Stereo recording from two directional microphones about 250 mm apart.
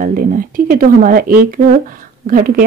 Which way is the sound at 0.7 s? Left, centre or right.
Right.